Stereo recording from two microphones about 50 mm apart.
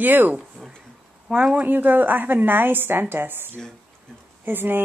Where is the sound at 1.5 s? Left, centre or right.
Right.